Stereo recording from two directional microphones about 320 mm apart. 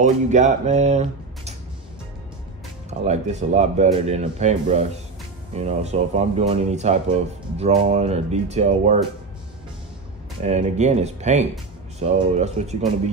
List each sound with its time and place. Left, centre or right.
0.0 s speech: right
2.9 s speech: right
10.4 s speech: right